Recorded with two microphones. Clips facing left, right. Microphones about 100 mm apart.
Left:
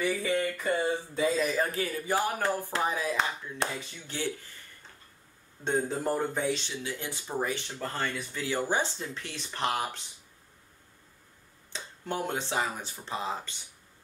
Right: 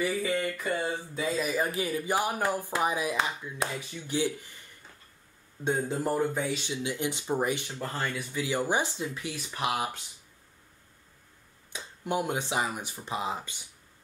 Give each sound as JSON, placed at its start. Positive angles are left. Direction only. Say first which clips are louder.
{"t": 0.3, "sound": "speech", "louder": "left 1 dB", "side_deg": 0}
{"t": 1.5, "sound": "speech", "louder": "right 1 dB", "side_deg": -15}
{"t": 5.6, "sound": "speech", "louder": "even", "side_deg": -10}
{"t": 6.6, "sound": "speech", "louder": "right 5 dB", "side_deg": -15}
{"t": 11.7, "sound": "speech", "louder": "right 4 dB", "side_deg": -10}